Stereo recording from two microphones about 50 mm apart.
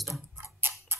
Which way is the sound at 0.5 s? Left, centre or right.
Right.